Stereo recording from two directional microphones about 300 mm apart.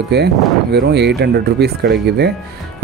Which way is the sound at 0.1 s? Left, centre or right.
Right.